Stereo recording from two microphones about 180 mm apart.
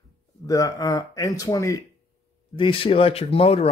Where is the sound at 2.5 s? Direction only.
30° left (ahead or behind).